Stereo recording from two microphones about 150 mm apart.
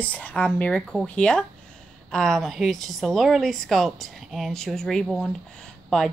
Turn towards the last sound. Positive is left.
turn(degrees=5)  # may be behind; listen again after turning